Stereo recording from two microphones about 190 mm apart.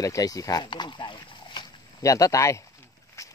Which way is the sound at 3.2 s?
15° left (ahead or behind).